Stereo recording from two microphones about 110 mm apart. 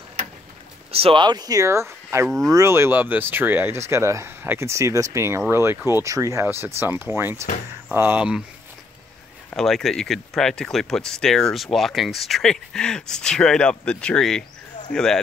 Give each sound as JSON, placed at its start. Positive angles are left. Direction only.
{"t": 0.9, "sound": "speech", "side_deg": -50}
{"t": 9.6, "sound": "speech", "side_deg": 5}